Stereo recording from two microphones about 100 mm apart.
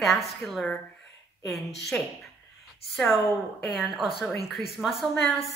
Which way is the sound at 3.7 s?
Centre (ahead or behind).